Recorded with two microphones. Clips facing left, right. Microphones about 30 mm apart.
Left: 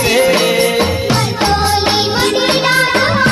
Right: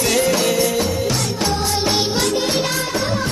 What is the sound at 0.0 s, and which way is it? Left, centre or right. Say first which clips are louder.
Music: left 6 dB; left.